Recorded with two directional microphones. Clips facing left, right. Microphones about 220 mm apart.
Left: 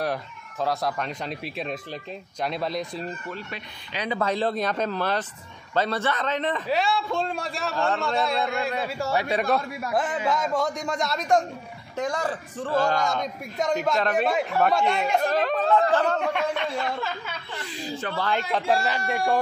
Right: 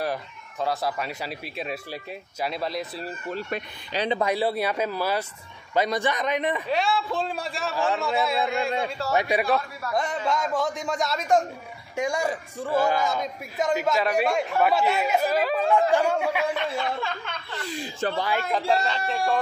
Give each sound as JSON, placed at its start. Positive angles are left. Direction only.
{"t": 0.0, "sound": "a man's voice", "side_deg": 0}
{"t": 3.9, "sound": "speech", "side_deg": -30}
{"t": 4.2, "sound": "speech", "side_deg": -10}
{"t": 6.7, "sound": "a man's voice", "side_deg": 0}
{"t": 9.1, "sound": "speech", "side_deg": -15}
{"t": 10.2, "sound": "a man's voice", "side_deg": 0}
{"t": 12.0, "sound": "a man's voice", "side_deg": -10}
{"t": 18.1, "sound": "speech", "side_deg": -10}
{"t": 18.7, "sound": "speech", "side_deg": 10}